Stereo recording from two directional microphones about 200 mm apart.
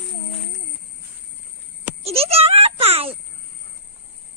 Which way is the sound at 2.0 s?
30° right (ahead or behind).